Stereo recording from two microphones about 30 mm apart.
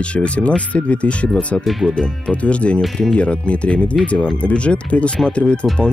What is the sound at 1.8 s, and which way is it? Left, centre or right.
Speech, left.